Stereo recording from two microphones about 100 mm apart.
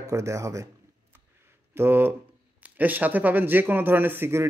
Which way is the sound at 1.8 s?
20° right (ahead or behind).